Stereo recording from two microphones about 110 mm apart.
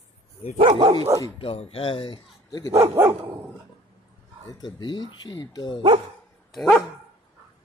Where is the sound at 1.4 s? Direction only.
60° left (ahead or behind).